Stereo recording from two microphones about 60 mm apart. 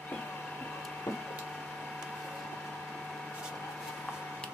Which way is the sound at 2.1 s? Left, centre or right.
Centre.